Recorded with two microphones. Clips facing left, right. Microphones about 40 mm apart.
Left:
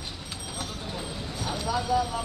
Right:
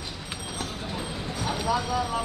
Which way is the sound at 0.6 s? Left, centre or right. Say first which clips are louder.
Right 2 dB; right.